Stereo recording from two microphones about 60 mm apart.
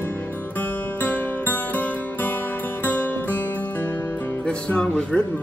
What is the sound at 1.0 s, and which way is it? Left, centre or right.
Music, left.